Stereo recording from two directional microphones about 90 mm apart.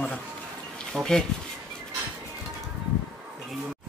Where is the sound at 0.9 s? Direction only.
5° left (ahead or behind).